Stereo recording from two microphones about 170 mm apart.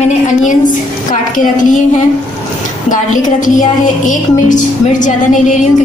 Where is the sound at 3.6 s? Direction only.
50° left (ahead or behind).